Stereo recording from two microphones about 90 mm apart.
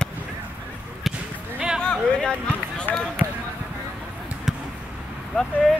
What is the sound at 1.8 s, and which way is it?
Speech, 10° left (ahead or behind).